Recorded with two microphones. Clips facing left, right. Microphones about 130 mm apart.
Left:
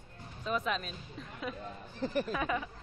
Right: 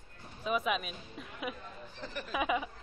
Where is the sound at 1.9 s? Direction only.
40° left (ahead or behind).